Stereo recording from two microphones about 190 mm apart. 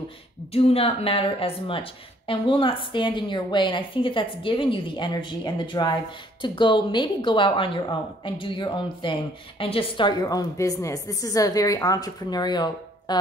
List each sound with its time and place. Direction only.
0.5 s a woman's voice: 30° left (ahead or behind)